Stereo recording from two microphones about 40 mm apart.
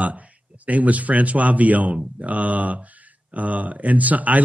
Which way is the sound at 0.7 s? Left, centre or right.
Right.